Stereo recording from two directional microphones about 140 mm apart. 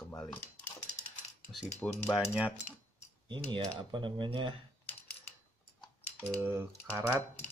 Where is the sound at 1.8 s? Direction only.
15° left (ahead or behind).